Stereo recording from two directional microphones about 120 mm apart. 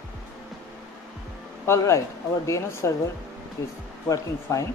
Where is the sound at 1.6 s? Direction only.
25° left (ahead or behind).